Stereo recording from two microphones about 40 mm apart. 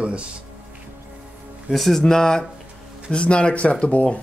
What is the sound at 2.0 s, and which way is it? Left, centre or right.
Speech, centre.